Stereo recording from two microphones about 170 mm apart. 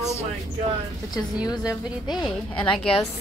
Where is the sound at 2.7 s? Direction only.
35° left (ahead or behind).